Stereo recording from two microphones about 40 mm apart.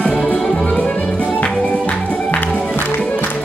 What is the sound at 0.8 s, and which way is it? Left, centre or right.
Music, left.